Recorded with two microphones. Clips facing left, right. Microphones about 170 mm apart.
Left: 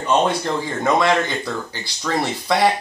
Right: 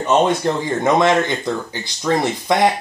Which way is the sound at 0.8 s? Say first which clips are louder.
Right 3 dB; 20° right (ahead or behind).